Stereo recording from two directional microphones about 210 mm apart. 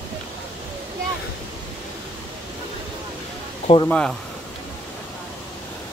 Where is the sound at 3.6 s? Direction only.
25° left (ahead or behind).